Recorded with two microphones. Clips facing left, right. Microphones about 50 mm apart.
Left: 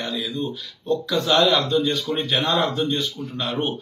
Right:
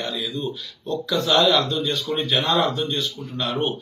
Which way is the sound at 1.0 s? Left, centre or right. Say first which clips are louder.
Right 1 dB; left.